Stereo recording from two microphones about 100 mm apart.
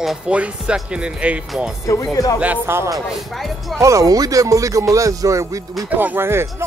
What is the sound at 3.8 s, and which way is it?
Speech, 35° right (ahead or behind).